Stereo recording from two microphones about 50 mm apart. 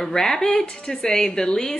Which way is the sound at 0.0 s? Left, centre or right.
Centre.